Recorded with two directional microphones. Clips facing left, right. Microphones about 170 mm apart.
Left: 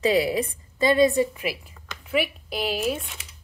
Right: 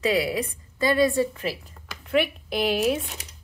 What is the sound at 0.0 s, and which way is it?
A woman's voice, 25° left (ahead or behind).